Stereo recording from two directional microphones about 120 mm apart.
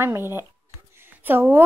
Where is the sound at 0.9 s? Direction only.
15° right (ahead or behind).